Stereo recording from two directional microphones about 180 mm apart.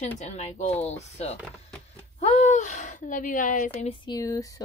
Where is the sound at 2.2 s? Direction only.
40° left (ahead or behind).